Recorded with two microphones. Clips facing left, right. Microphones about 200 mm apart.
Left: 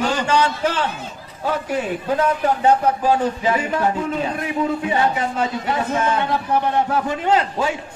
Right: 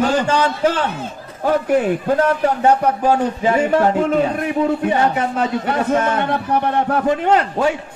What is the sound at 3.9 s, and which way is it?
A man's voice, 60° right (ahead or behind).